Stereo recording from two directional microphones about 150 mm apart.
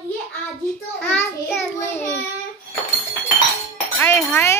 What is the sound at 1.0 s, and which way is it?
Speech, 15° left (ahead or behind).